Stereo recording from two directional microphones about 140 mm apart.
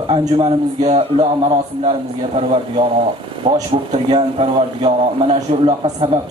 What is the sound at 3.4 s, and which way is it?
A man's voice, 40° right (ahead or behind).